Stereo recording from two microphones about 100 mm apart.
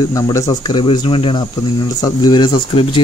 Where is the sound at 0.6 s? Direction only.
50° left (ahead or behind).